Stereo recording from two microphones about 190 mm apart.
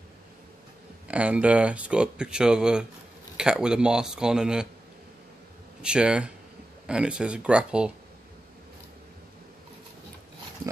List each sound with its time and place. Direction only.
1.0 s speech: 5° right (ahead or behind)
5.8 s speech: 5° right (ahead or behind)